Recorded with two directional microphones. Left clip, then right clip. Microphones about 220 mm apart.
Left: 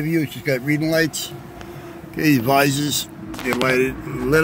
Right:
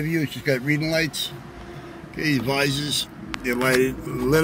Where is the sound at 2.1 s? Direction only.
40° left (ahead or behind).